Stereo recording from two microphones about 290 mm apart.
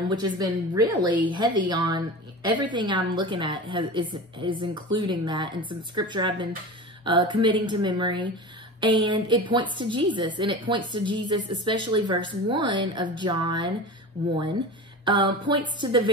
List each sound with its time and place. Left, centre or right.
0.1 s a woman's voice: centre
15.0 s a woman's voice: centre